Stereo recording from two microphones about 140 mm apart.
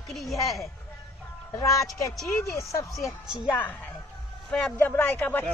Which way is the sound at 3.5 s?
10° left (ahead or behind).